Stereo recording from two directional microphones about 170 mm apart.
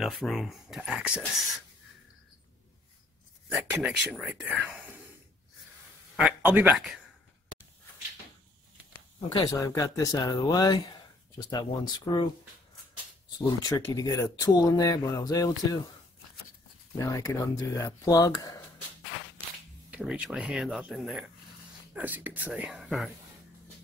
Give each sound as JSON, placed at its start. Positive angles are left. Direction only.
{"t": 0.0, "sound": "speech", "side_deg": 0}
{"t": 3.5, "sound": "speech", "side_deg": -5}
{"t": 6.1, "sound": "speech", "side_deg": -10}
{"t": 9.3, "sound": "speech", "side_deg": 25}
{"t": 13.6, "sound": "speech", "side_deg": 20}
{"t": 17.0, "sound": "speech", "side_deg": 20}
{"t": 19.9, "sound": "speech", "side_deg": -10}